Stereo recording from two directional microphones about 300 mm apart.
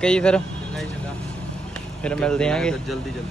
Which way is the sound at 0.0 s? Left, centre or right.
Centre.